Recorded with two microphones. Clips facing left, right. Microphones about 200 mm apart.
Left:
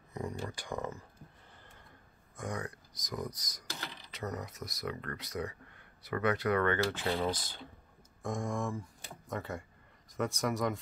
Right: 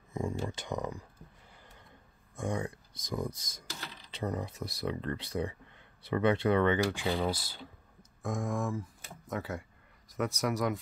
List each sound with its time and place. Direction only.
0.1 s speech: 25° right (ahead or behind)
2.3 s speech: 25° right (ahead or behind); by 10.8 s centre (ahead or behind)